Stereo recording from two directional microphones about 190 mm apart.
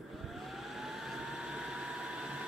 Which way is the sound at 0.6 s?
Centre (ahead or behind).